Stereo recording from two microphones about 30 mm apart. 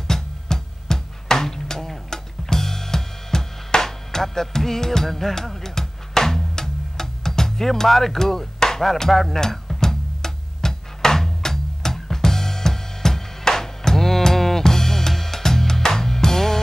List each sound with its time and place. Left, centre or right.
0.1 s music: centre
11.4 s drum: centre
14.6 s music: centre